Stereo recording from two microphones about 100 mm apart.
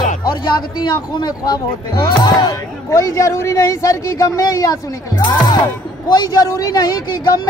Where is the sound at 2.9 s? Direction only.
30° left (ahead or behind).